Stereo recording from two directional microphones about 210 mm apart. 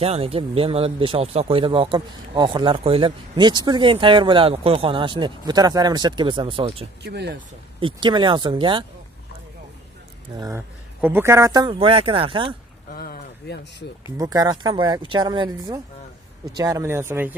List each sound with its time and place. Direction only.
0.0 s speech: 30° right (ahead or behind)
7.0 s speech: 50° right (ahead or behind)
7.8 s speech: 20° right (ahead or behind)
10.3 s speech: 15° right (ahead or behind)
12.9 s speech: 45° left (ahead or behind)
14.1 s speech: 20° right (ahead or behind)